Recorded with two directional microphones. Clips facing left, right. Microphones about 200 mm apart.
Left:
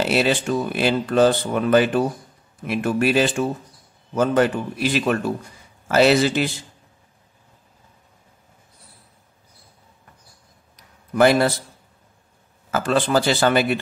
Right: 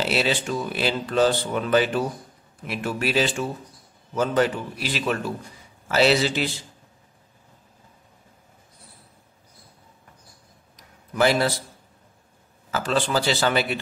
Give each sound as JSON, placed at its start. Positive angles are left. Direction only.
{"t": 0.0, "sound": "speech", "side_deg": 50}
{"t": 11.1, "sound": "speech", "side_deg": 55}
{"t": 12.7, "sound": "speech", "side_deg": 50}